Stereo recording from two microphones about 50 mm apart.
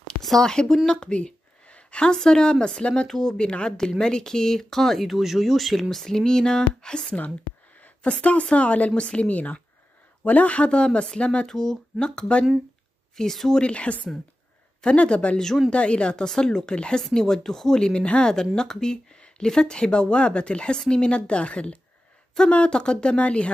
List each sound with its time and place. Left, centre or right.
0.4 s speech: centre
0.8 s a sound: centre
2.1 s speech: centre
9.3 s speech: left
11.4 s speech: centre
13.1 s speech: centre
13.6 s speech: left
15.0 s speech: left
15.3 s speech: centre
15.7 s speech: left